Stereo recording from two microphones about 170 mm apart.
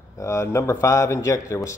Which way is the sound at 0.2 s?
15° left (ahead or behind).